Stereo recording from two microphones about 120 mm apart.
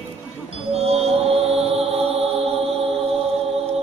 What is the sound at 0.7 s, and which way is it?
Music, 60° right (ahead or behind).